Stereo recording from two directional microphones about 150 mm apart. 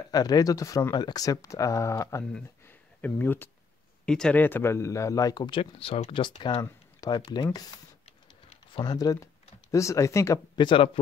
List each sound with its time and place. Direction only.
0.1 s speech: 25° left (ahead or behind)
2.3 s a sound: 10° left (ahead or behind)
4.0 s speech: 5° left (ahead or behind); by 10.9 s 30° left (ahead or behind)